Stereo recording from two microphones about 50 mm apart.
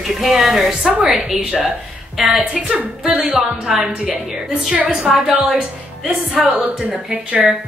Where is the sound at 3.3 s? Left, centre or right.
Centre.